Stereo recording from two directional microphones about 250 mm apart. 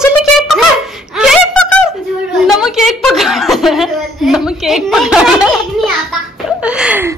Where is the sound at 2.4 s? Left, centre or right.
Centre.